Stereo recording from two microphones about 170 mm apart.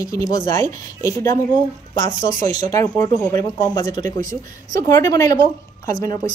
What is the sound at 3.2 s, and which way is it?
A woman's voice, 20° left (ahead or behind).